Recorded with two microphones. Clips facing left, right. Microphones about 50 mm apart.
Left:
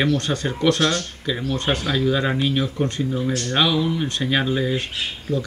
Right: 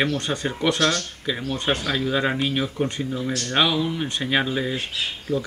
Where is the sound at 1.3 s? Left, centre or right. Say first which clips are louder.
Left 1 dB; centre.